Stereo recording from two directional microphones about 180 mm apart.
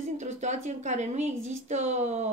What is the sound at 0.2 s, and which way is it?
Speech, 40° right (ahead or behind).